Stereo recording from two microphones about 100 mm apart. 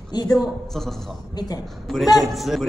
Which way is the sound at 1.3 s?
40° left (ahead or behind).